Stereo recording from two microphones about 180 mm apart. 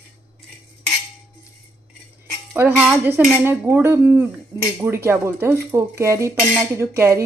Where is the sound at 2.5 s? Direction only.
10° right (ahead or behind).